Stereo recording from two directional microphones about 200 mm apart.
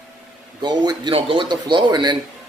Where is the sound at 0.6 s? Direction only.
20° right (ahead or behind).